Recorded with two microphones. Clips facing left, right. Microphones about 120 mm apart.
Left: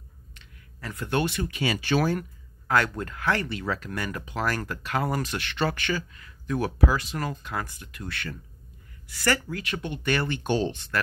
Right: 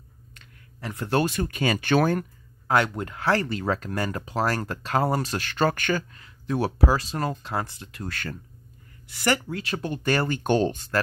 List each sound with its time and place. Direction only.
0.7 s speech: 25° right (ahead or behind); by 2.2 s 55° right (ahead or behind)
2.7 s speech: 20° right (ahead or behind)
3.3 s speech: 35° right (ahead or behind)
6.2 s speech: 30° right (ahead or behind)
9.0 s speech: 20° right (ahead or behind)
9.6 s speech: 35° right (ahead or behind)